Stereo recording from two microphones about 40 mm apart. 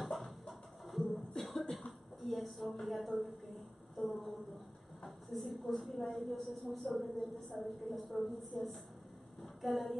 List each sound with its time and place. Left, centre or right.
0.5 s music: centre
1.4 s cough: centre
1.9 s a sound: centre
4.0 s a woman's voice: left
5.3 s a woman's voice: centre